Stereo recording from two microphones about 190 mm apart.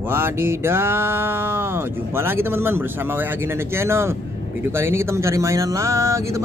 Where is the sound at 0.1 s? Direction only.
10° right (ahead or behind).